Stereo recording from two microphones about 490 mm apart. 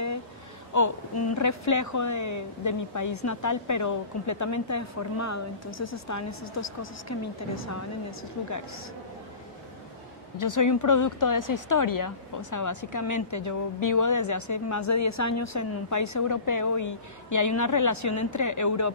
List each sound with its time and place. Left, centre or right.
0.7 s speech: left
10.3 s speech: left